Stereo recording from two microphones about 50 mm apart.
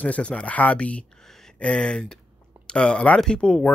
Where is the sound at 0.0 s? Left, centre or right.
Left.